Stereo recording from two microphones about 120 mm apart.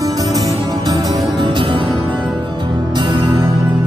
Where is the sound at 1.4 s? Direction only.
40° right (ahead or behind).